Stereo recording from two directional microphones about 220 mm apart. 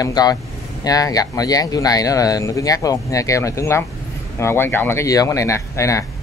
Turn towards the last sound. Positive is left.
turn(degrees=15)  # may be behind; listen again after turning